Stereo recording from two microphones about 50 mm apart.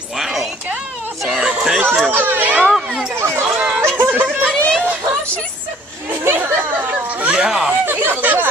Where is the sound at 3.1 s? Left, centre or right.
Right.